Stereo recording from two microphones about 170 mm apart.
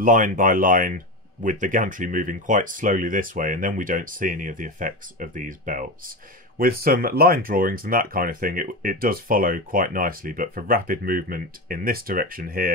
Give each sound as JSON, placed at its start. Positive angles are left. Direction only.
{"t": 0.0, "sound": "speech", "side_deg": -50}